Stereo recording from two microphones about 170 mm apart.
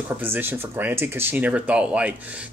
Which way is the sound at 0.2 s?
10° right (ahead or behind).